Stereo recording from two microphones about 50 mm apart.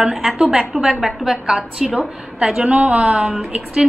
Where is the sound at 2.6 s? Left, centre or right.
Right.